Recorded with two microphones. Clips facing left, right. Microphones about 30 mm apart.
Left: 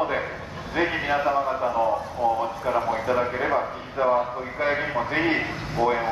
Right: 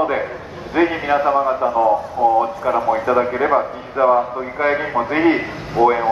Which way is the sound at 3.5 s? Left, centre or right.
Right.